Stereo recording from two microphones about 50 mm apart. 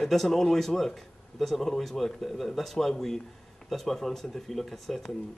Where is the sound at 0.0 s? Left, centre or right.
Centre.